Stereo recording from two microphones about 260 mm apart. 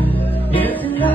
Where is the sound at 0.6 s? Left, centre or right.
Centre.